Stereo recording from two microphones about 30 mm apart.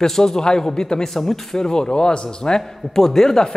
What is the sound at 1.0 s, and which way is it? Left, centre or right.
Speech, centre.